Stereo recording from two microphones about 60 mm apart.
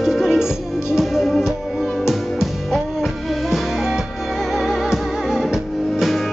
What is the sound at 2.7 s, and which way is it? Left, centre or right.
Music, centre.